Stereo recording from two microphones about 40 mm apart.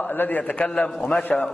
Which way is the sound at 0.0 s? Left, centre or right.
Left.